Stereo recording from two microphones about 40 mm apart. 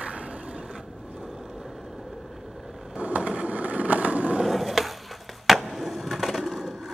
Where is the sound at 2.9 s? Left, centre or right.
Right.